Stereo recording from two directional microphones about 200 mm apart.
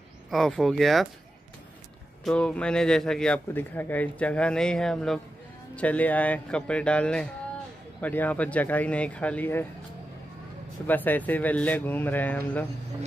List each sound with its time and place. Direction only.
0.3 s a man's voice: centre (ahead or behind)
2.2 s a man's voice: 5° left (ahead or behind)
10.9 s speech: 10° left (ahead or behind)